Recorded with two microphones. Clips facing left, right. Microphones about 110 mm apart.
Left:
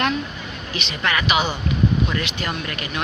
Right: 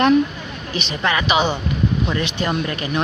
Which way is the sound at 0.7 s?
35° right (ahead or behind).